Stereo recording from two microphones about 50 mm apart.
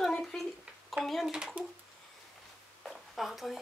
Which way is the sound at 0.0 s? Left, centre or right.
Centre.